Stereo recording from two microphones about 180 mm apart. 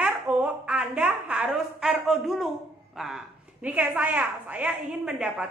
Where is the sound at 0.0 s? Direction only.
10° right (ahead or behind).